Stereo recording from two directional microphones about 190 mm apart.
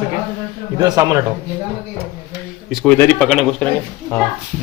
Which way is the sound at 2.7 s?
Centre (ahead or behind).